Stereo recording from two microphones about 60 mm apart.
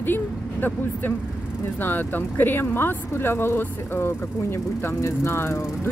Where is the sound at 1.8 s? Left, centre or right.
Left.